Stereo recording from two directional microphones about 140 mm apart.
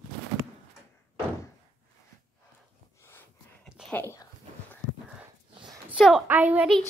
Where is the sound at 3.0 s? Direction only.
15° left (ahead or behind).